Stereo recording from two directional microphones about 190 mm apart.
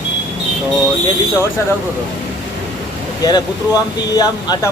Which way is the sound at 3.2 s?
20° left (ahead or behind).